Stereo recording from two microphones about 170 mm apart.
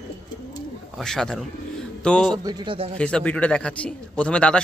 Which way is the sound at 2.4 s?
30° right (ahead or behind).